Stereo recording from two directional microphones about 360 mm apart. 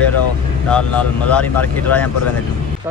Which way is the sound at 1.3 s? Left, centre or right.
Centre.